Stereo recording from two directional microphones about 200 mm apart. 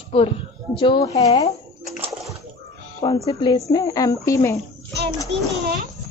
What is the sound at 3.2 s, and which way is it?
A woman's voice, 25° left (ahead or behind).